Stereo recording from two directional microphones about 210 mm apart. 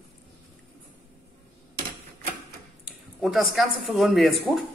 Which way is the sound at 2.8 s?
Centre (ahead or behind).